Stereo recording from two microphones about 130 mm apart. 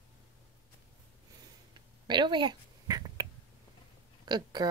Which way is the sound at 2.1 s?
35° right (ahead or behind).